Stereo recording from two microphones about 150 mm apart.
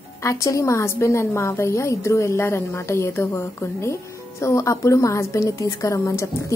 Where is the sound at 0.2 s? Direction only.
20° left (ahead or behind).